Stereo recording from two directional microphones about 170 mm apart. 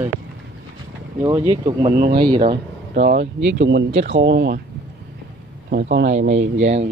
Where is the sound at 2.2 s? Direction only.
25° right (ahead or behind).